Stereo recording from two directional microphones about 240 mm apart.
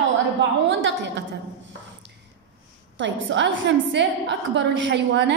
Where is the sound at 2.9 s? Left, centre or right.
Right.